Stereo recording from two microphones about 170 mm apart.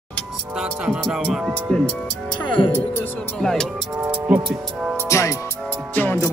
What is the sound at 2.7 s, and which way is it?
Speech, 15° left (ahead or behind).